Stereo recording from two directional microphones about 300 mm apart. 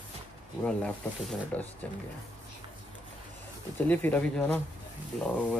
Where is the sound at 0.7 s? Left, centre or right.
Centre.